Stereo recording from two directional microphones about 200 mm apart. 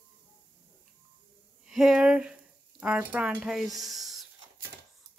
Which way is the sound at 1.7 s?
Centre (ahead or behind).